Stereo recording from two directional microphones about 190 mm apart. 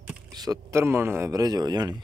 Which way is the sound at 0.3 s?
20° right (ahead or behind).